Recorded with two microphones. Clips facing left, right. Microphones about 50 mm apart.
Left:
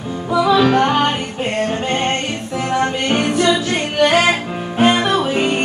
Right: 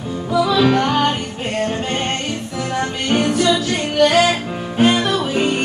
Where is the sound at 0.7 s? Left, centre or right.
Left.